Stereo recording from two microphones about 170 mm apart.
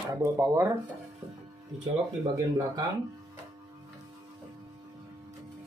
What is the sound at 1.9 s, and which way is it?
Speech, 20° right (ahead or behind).